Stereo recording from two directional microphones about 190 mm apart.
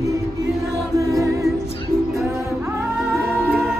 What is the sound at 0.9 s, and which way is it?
Music, 15° right (ahead or behind).